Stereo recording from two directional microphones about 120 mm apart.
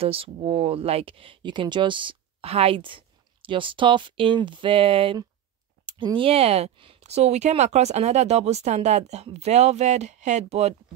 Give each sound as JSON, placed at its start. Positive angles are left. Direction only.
{"t": 0.0, "sound": "speech", "side_deg": -55}